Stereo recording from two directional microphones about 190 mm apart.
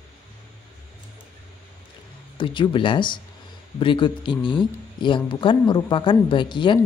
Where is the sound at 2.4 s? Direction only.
25° left (ahead or behind).